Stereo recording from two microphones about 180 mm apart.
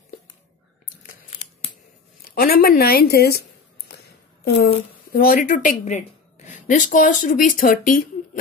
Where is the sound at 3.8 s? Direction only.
65° left (ahead or behind).